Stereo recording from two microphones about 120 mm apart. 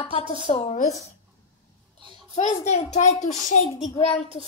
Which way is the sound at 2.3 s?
85° left.